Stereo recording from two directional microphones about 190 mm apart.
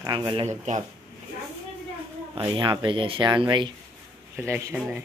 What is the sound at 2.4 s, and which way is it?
Speech, 25° right (ahead or behind).